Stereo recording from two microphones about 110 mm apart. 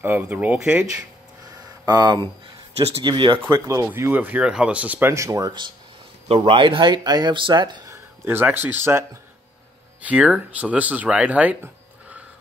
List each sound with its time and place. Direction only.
0.0 s speech: 15° right (ahead or behind)
1.9 s speech: 40° right (ahead or behind)
3.4 s speech: 30° right (ahead or behind)
5.1 s speech: 30° right (ahead or behind)
6.2 s speech: 55° right (ahead or behind)
7.9 s speech: 20° right (ahead or behind)
10.0 s speech: 10° right (ahead or behind)